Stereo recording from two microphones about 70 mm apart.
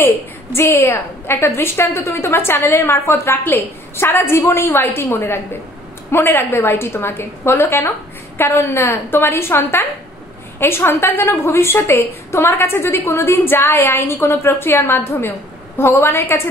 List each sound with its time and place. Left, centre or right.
0.6 s a woman's voice: left
14.6 s a woman's voice: left